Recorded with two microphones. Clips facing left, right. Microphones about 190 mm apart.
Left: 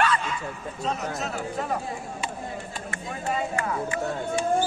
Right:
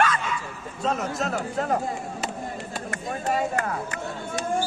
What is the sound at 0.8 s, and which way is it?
Speech, 50° right (ahead or behind).